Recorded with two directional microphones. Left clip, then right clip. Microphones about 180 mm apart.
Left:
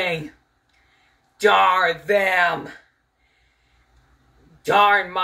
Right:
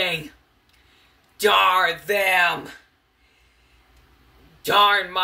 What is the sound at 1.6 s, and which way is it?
Speech, 10° right (ahead or behind).